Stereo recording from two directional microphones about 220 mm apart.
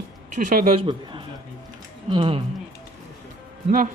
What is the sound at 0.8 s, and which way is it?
A man's voice, 20° right (ahead or behind).